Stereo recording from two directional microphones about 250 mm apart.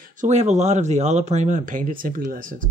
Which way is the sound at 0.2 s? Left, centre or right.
Right.